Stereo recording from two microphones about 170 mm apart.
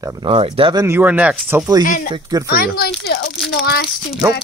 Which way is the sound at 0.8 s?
15° right (ahead or behind).